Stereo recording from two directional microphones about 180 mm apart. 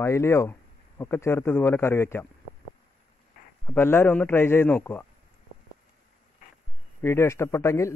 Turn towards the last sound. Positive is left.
turn(degrees=15)  # may be behind; listen again after turning